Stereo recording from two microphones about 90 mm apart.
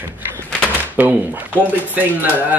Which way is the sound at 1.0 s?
20° right (ahead or behind).